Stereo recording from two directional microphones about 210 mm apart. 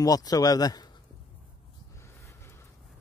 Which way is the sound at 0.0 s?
15° left (ahead or behind).